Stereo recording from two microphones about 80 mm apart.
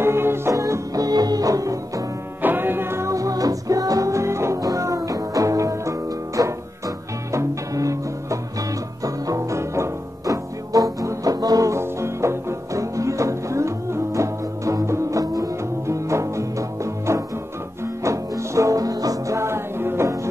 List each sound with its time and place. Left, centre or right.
0.0 s music: right
0.6 s music: right
2.4 s music: right
11.7 s music: right